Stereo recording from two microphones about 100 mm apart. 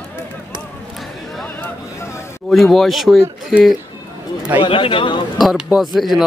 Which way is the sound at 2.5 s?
Centre (ahead or behind).